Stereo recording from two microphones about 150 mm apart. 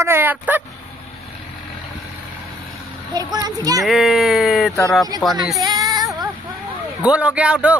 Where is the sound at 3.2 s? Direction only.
25° right (ahead or behind).